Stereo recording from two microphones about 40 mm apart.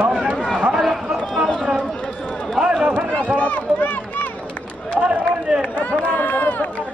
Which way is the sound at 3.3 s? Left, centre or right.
Left.